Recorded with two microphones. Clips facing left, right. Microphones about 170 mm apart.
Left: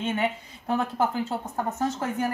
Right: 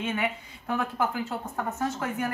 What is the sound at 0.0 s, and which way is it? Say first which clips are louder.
A woman's voice: left 3 dB; 30° left (ahead or behind).